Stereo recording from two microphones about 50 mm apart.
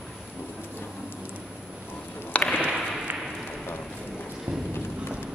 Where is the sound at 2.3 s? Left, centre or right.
Left.